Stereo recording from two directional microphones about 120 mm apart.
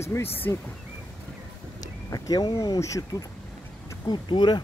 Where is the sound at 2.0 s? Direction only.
30° left (ahead or behind).